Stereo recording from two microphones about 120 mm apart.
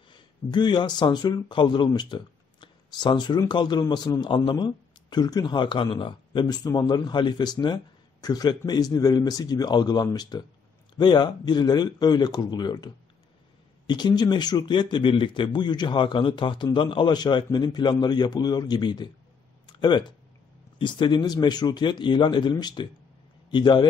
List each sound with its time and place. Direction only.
0.1 s a man's voice: 40° left (ahead or behind)
19.6 s a sound: 40° left (ahead or behind)
20.7 s a man's voice: 40° left (ahead or behind)